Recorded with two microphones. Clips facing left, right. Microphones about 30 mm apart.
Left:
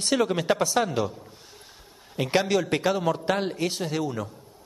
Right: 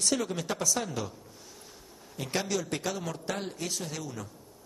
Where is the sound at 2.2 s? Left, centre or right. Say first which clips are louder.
Left 8 dB; left.